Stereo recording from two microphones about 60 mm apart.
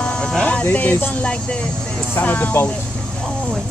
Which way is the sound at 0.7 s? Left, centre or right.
Left.